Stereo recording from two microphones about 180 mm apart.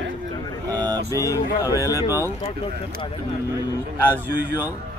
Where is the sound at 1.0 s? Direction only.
20° left (ahead or behind).